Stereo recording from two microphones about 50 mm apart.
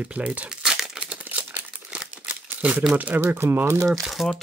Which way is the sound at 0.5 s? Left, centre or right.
Centre.